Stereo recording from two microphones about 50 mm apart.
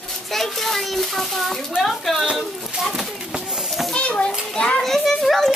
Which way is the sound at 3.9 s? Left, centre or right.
Left.